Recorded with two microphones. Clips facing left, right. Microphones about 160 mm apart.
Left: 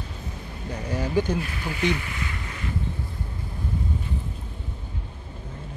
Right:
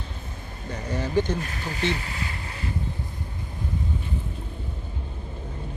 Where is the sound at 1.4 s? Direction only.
40° right (ahead or behind).